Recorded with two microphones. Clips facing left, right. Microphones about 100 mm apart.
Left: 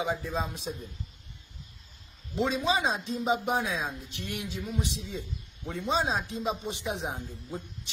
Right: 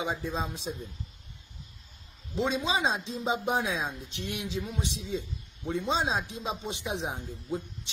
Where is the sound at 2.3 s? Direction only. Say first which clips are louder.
Left 1 dB; 20° right (ahead or behind).